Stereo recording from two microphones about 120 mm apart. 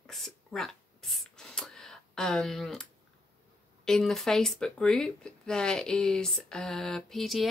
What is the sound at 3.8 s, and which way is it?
Speech, centre (ahead or behind).